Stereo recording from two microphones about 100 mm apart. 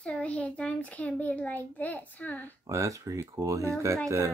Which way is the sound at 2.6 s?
35° right (ahead or behind).